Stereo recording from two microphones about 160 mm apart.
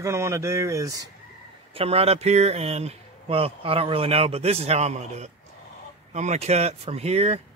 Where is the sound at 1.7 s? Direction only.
40° right (ahead or behind).